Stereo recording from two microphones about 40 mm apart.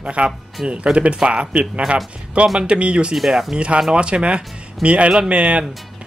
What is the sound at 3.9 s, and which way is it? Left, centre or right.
Speech, right.